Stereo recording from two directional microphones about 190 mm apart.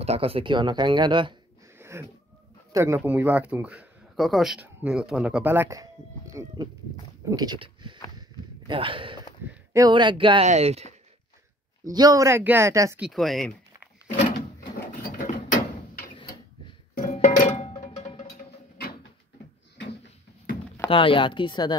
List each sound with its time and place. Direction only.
0.0 s speech: 30° right (ahead or behind)
1.8 s wheeze: 15° right (ahead or behind)
2.7 s speech: 15° right (ahead or behind)
8.2 s a sound: 25° right (ahead or behind)
9.7 s speech: 20° right (ahead or behind)
11.9 s speech: 20° right (ahead or behind)
13.0 s speech: centre (ahead or behind)
14.6 s a sound: 45° left (ahead or behind)
16.1 s mechanisms: 25° left (ahead or behind)
17.2 s music: 40° left (ahead or behind)
20.9 s speech: 25° left (ahead or behind)